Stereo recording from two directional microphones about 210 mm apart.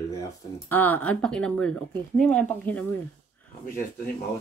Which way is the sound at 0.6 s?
10° left (ahead or behind).